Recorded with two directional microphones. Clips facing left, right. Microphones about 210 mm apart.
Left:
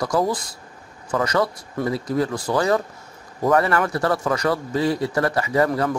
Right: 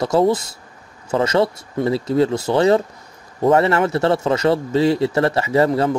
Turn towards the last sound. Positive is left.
turn(degrees=-25)  # may be behind; listen again after turning